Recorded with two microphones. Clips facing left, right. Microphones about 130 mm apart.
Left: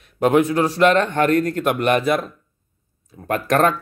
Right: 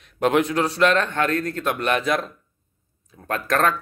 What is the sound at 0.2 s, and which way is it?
Speech, 10° left (ahead or behind).